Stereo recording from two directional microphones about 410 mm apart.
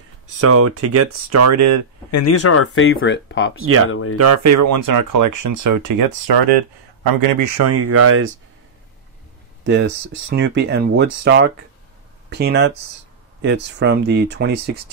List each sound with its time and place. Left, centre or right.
0.4 s speech: right
2.0 s speech: left
4.2 s speech: right
10.3 s speech: right